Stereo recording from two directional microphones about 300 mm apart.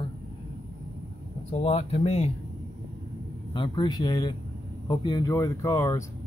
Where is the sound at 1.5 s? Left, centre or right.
Left.